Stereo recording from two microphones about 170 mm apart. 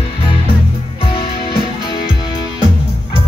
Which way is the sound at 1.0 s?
30° left (ahead or behind).